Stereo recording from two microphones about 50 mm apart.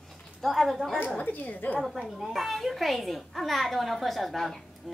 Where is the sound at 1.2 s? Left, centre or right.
Left.